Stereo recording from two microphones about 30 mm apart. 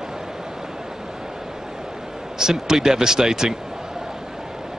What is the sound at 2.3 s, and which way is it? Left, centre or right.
Speech, centre.